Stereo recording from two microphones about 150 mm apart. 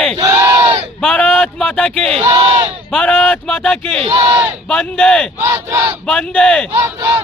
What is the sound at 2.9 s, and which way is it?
Speech, 5° left (ahead or behind).